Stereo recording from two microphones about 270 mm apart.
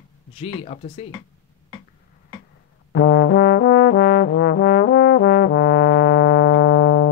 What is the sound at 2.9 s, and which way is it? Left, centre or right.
Trombone, left.